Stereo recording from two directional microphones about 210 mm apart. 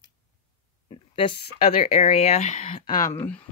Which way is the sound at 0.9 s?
25° left (ahead or behind).